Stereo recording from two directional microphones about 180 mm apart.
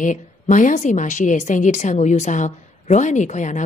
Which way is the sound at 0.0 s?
45° left (ahead or behind).